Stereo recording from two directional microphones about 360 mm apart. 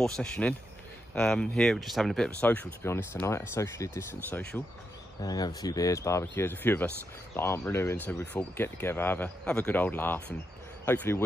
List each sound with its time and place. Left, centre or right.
0.0 s speech: centre